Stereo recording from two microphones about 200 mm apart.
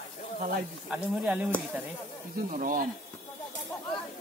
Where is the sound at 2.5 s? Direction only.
40° right (ahead or behind).